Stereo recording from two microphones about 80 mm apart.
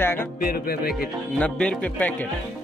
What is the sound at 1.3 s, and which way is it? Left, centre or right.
Speech, centre.